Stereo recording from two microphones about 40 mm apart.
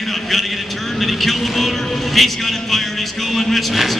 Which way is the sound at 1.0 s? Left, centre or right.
Centre.